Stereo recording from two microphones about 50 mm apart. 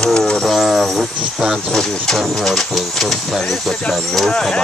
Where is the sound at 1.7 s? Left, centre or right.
Centre.